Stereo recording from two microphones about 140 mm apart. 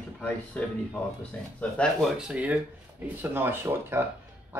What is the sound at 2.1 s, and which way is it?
Speech, 5° right (ahead or behind).